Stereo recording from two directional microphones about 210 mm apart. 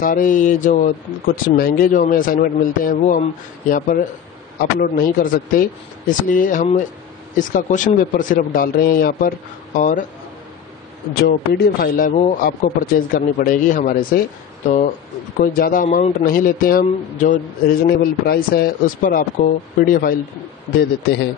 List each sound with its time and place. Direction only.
0.0 s a man's voice: 40° left (ahead or behind)
11.2 s a man's voice: 50° left (ahead or behind)
15.4 s a man's voice: 45° left (ahead or behind)